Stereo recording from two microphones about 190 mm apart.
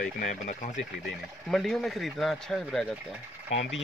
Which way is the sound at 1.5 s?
Centre (ahead or behind).